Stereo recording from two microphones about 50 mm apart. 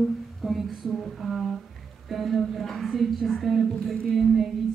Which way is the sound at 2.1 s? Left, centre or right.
Centre.